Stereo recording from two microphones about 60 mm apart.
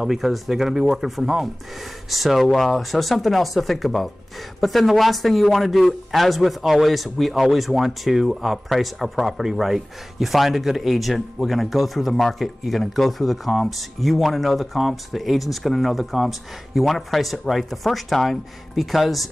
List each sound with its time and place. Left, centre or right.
0.0 s speech: centre